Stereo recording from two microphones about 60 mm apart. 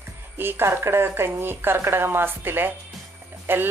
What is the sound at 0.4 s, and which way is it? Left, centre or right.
Speech, right.